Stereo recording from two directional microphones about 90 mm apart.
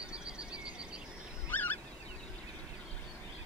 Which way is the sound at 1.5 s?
20° left (ahead or behind).